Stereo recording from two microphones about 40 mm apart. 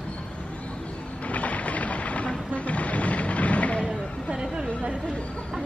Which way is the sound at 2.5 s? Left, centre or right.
Left.